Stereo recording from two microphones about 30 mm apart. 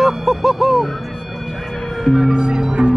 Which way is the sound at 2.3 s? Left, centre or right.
Right.